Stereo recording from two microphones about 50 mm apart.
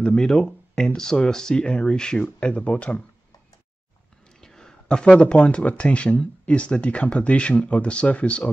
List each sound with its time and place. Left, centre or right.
0.0 s speech: centre; by 3.0 s left
4.4 s a sound: centre
5.3 s speech: left